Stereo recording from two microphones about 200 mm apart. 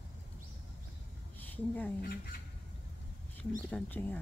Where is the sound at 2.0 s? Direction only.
50° left (ahead or behind).